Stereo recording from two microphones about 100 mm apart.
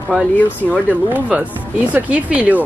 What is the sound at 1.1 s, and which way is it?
Speech, 15° right (ahead or behind).